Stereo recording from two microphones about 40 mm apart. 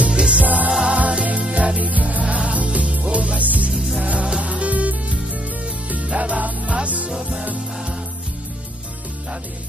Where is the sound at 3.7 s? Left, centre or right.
Centre.